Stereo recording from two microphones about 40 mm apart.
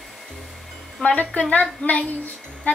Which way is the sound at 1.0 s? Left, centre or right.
Left.